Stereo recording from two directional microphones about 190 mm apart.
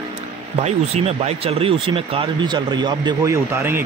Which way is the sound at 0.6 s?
35° right (ahead or behind).